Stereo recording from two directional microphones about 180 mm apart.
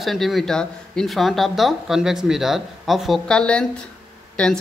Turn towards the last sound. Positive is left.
turn(degrees=5)  # may be behind; listen again after turning